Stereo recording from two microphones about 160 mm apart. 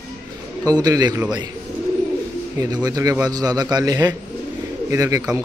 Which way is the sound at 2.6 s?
25° right (ahead or behind).